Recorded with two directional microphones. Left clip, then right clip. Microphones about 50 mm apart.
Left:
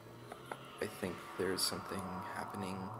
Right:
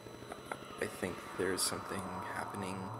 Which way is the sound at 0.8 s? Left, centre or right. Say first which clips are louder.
Right 2 dB; left.